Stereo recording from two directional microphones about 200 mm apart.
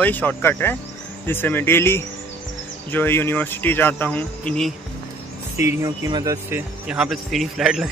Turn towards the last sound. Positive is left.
turn(degrees=0)  # may be behind; listen again after turning